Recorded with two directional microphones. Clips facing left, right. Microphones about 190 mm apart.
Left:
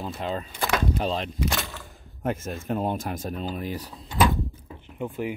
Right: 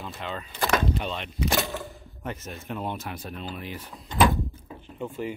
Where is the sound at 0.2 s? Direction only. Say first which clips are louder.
Even; 35° left (ahead or behind).